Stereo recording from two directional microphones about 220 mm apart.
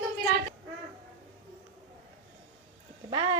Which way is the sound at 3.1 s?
20° right (ahead or behind).